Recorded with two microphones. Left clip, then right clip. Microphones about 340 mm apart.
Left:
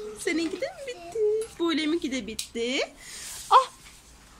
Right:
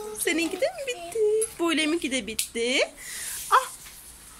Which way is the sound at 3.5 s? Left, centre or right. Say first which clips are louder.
Left 3 dB; centre.